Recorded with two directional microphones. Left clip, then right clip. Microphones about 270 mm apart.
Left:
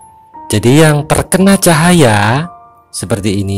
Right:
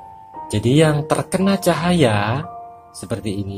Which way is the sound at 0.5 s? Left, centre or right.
Left.